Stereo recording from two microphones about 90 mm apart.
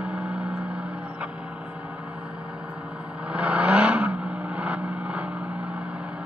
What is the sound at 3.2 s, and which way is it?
Vehicle, 10° right (ahead or behind).